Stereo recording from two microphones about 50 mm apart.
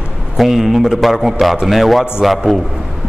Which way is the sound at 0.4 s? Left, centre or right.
Centre.